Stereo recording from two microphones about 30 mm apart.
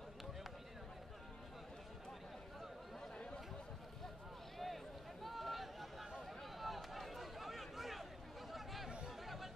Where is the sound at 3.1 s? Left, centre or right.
Left.